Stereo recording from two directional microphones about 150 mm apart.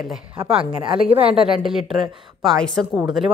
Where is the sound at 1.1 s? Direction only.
40° right (ahead or behind).